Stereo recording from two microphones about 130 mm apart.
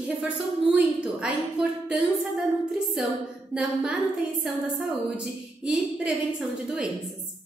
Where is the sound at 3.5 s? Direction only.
10° right (ahead or behind).